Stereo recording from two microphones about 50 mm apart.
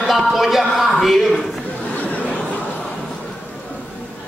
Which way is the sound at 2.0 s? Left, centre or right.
Left.